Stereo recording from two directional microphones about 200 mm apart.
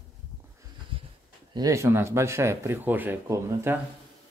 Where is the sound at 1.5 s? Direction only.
15° right (ahead or behind).